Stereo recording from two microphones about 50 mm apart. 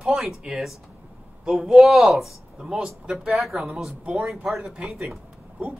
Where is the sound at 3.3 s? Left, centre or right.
Centre.